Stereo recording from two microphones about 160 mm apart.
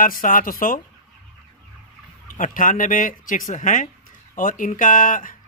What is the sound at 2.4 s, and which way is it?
Speech, 55° left (ahead or behind).